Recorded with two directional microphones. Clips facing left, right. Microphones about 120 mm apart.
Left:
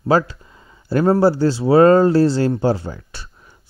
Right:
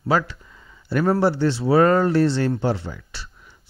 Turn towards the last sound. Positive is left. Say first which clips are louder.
# left 4 dB
turn(degrees=45)  # may be behind; listen again after turning